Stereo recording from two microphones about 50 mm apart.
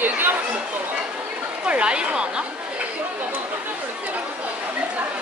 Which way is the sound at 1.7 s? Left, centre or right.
Right.